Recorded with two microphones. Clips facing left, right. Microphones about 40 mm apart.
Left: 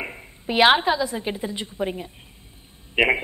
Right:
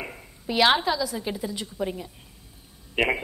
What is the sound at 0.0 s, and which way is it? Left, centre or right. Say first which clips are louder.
A woman's voice: left 3 dB; left.